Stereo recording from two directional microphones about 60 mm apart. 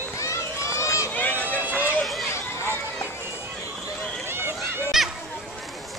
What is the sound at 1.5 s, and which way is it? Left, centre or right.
Run, right.